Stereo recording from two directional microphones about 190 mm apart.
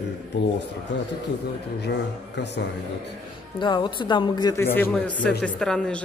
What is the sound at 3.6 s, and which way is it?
A woman's voice, 25° left (ahead or behind).